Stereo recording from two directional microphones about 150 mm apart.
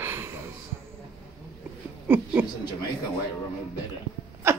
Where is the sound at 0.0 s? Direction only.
15° right (ahead or behind).